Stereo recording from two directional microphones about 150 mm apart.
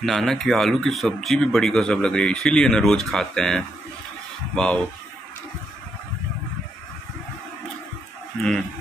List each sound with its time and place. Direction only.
0.0 s speech: centre (ahead or behind)
8.3 s speech: 5° left (ahead or behind)